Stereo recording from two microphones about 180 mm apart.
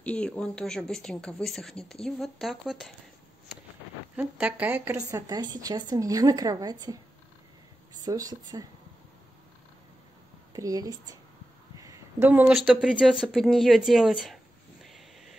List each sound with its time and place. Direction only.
0.0 s speech: 5° left (ahead or behind)
4.2 s a woman's voice: 10° right (ahead or behind)
5.1 s a woman's voice: 20° right (ahead or behind)
10.5 s a woman's voice: 20° right (ahead or behind); by 15.3 s centre (ahead or behind)